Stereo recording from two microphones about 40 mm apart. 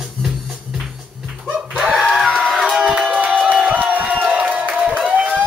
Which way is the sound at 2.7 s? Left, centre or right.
Centre.